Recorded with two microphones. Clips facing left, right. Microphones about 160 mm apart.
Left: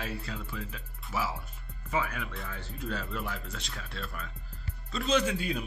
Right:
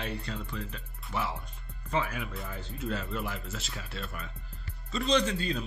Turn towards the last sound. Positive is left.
turn(degrees=10)  # may be behind; listen again after turning